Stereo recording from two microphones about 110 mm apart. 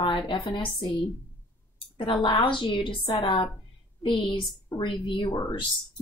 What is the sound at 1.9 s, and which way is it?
Speech, 50° left (ahead or behind).